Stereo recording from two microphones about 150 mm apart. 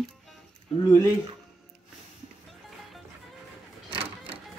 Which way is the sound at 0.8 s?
25° left (ahead or behind).